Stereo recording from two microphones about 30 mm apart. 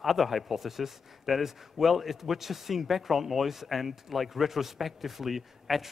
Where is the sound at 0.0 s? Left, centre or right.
Centre.